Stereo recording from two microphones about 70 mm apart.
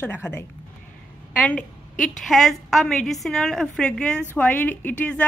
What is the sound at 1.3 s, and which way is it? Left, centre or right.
Speech, centre.